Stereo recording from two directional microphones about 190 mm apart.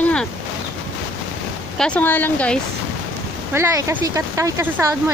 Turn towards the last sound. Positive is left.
turn(degrees=-10)  # may be behind; listen again after turning